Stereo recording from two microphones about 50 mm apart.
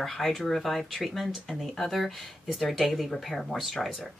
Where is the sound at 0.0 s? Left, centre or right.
Centre.